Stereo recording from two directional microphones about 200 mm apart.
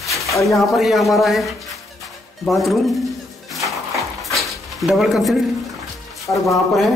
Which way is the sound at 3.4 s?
Centre (ahead or behind).